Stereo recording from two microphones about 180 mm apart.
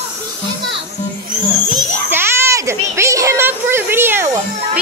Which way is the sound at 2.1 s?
15° right (ahead or behind).